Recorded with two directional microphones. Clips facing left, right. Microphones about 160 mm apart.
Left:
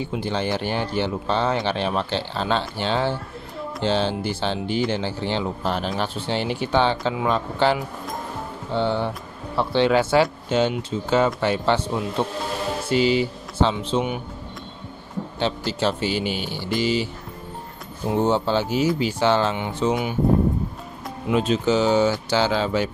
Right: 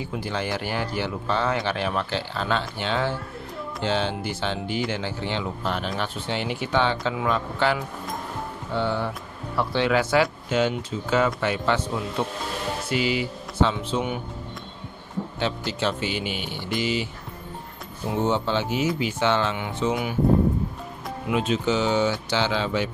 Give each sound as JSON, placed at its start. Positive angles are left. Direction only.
{"t": 0.0, "sound": "speech", "side_deg": 25}
{"t": 15.8, "sound": "speech", "side_deg": 35}
{"t": 18.2, "sound": "speech", "side_deg": 35}
{"t": 21.3, "sound": "speech", "side_deg": 35}